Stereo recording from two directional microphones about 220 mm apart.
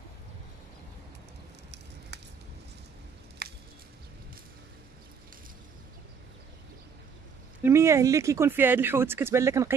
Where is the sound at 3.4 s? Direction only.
45° right (ahead or behind).